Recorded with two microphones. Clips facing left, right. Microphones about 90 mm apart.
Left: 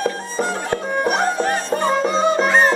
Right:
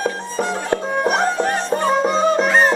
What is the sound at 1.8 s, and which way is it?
Music, 5° right (ahead or behind).